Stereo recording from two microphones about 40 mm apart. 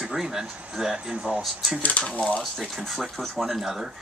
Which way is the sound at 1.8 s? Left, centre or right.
Left.